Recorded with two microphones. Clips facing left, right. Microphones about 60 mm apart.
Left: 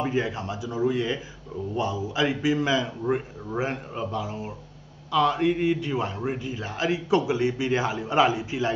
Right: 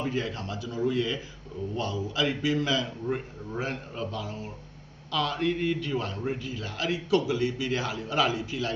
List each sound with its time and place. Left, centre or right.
0.1 s a man's voice: centre